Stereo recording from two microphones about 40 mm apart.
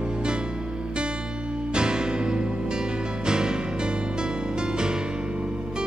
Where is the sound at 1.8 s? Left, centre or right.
Right.